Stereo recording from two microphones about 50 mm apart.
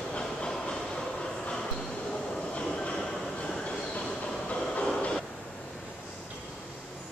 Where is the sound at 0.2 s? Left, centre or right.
Centre.